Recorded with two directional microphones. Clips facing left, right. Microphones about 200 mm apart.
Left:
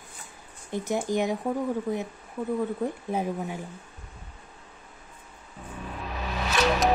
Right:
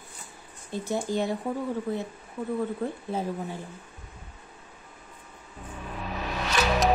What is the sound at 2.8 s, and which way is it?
Speech, 15° left (ahead or behind).